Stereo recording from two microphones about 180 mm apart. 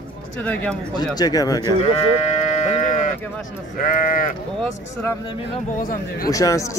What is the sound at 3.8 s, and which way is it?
Speech, 50° left (ahead or behind).